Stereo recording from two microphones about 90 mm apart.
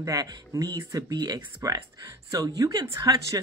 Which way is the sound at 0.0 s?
45° right (ahead or behind).